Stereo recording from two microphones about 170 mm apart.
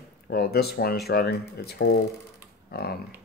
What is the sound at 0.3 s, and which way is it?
A man's voice, 65° left (ahead or behind).